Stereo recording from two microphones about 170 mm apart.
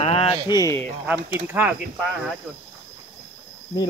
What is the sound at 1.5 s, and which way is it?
Speech, 10° right (ahead or behind).